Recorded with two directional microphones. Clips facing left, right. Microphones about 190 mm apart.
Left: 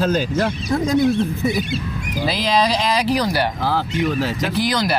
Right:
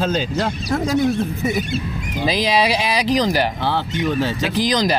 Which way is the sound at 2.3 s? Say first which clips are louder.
Right 1 dB; 15° right (ahead or behind).